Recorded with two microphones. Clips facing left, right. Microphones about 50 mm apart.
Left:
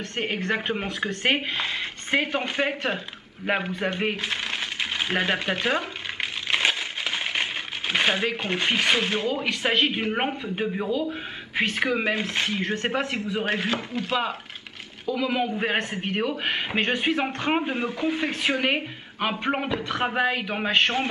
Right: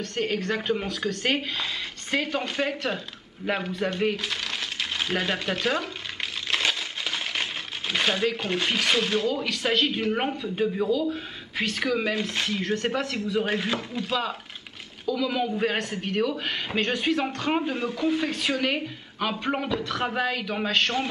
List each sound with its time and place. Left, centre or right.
0.0 s speech: left
3.4 s coin: left
6.5 s a sound: left
7.9 s speech: left